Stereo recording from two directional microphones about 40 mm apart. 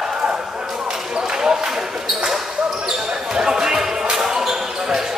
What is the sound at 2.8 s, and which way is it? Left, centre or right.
Basketball bounce, centre.